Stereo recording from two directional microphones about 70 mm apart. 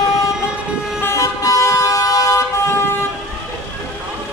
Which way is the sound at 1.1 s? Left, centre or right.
Left.